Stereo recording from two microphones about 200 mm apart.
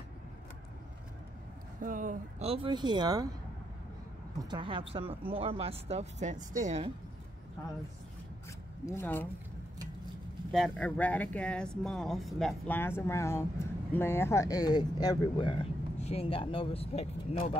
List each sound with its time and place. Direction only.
1.8 s speech: 40° right (ahead or behind); by 3.3 s 20° right (ahead or behind)
4.4 s speech: 20° right (ahead or behind)
8.8 s speech: 10° left (ahead or behind)
10.5 s speech: 5° left (ahead or behind); by 17.6 s 30° left (ahead or behind)